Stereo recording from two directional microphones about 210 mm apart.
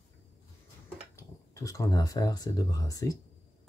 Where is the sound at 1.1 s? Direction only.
15° left (ahead or behind).